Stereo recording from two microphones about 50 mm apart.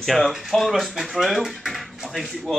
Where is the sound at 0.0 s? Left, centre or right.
Centre.